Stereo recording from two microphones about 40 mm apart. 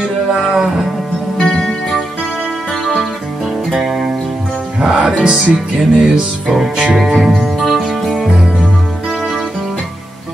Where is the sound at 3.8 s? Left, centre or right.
Centre.